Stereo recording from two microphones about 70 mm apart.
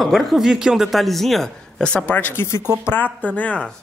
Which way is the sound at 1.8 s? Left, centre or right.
Centre.